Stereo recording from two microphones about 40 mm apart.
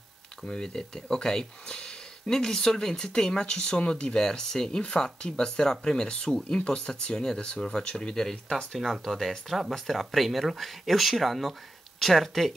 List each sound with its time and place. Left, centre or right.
0.5 s speech: centre
8.3 s speech: centre